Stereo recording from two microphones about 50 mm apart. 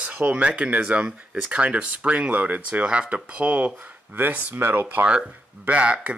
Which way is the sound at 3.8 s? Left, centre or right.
Right.